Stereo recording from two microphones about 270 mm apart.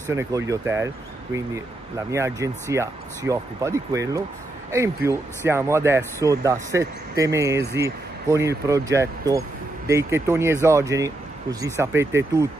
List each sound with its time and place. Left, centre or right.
0.1 s speech: centre